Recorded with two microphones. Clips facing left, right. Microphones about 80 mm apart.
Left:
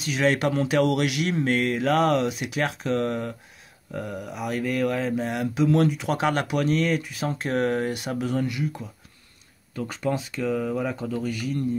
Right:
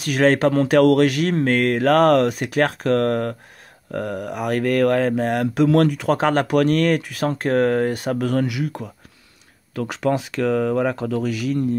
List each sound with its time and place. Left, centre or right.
0.0 s speech: right
0.3 s speech: right
6.1 s speech: right
8.2 s speech: right
9.8 s speech: right